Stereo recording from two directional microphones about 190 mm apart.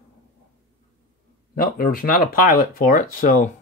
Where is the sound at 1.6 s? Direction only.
50° left (ahead or behind).